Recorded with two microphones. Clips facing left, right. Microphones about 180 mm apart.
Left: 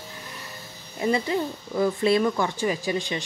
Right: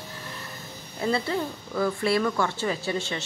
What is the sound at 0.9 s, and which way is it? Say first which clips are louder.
Speech: left 2 dB; 15° left (ahead or behind).